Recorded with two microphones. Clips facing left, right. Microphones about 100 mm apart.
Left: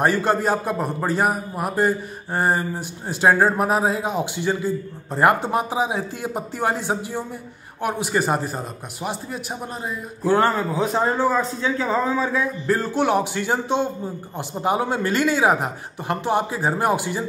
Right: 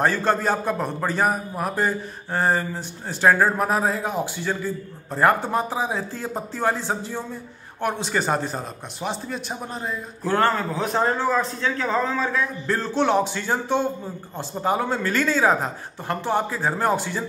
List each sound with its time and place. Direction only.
0.0 s a man's voice: 15° left (ahead or behind)